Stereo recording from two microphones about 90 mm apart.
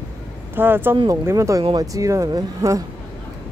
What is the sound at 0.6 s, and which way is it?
Speech, 25° right (ahead or behind).